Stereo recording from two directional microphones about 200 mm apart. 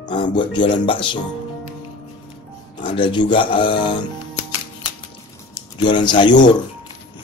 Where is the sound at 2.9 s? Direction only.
25° left (ahead or behind).